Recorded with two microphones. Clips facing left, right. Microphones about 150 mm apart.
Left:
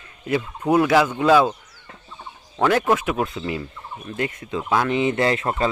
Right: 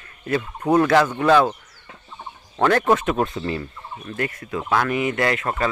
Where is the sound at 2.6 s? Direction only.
10° left (ahead or behind).